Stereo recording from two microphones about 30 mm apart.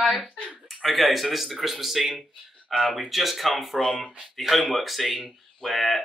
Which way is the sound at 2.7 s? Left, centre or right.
Centre.